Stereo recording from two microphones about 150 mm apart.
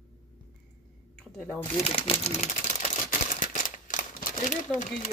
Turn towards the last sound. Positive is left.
turn(degrees=55)  # may be behind; listen again after turning